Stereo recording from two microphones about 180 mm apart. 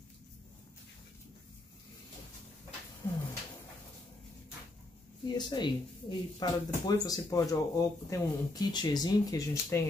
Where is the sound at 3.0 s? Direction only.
20° left (ahead or behind).